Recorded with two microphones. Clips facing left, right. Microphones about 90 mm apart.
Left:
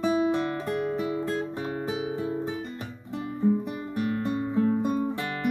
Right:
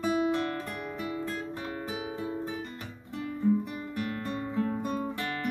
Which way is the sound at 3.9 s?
20° left (ahead or behind).